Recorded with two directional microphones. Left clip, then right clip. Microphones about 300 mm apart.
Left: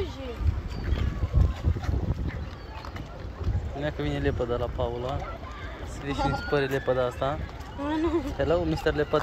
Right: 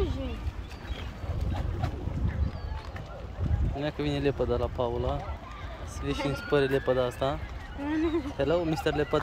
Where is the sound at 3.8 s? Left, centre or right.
Centre.